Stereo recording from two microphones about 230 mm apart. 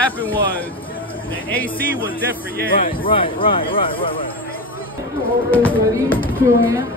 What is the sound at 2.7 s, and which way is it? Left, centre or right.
Speech, left.